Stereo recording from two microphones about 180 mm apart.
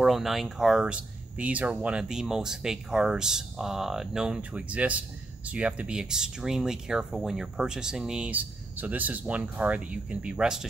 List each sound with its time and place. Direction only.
0.0 s speech: centre (ahead or behind)